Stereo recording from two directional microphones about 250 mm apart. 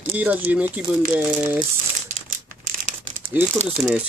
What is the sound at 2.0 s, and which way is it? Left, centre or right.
Crumpling, right.